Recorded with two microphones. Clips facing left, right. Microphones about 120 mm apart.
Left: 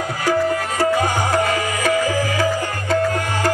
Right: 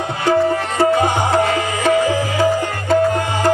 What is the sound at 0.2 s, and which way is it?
Music, 25° right (ahead or behind).